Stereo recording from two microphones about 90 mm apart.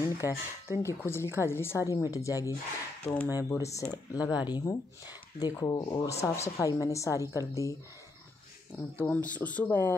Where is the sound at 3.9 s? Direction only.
45° left (ahead or behind).